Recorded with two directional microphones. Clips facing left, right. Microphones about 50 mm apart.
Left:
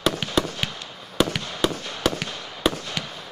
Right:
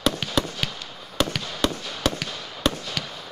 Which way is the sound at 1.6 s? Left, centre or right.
Centre.